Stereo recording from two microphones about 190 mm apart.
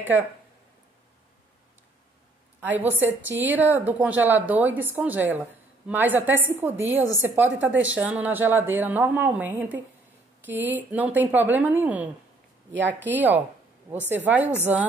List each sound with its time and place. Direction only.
2.8 s a woman's voice: 10° right (ahead or behind)
12.7 s speech: 70° right (ahead or behind)
13.1 s a woman's voice: 10° right (ahead or behind)